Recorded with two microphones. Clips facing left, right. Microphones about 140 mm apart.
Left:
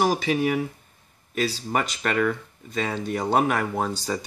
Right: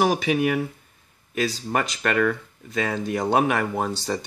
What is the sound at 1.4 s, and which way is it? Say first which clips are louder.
Speech: right 1 dB; 5° left (ahead or behind).